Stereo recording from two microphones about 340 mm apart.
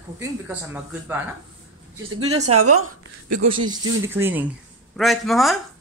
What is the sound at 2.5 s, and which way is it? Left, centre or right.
Speech, right.